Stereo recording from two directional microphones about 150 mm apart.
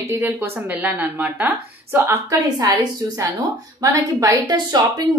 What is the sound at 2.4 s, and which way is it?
Speech, 25° right (ahead or behind).